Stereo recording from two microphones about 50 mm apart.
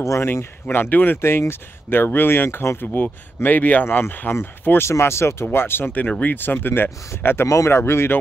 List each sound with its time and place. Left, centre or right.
0.2 s speech: left
1.2 s speech: left
4.3 s speech: left
4.9 s speech: left
5.9 s speech: left
6.2 s speech: left
7.4 s speech: left